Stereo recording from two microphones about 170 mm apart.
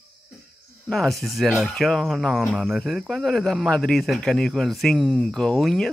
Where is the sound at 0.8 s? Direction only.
Centre (ahead or behind).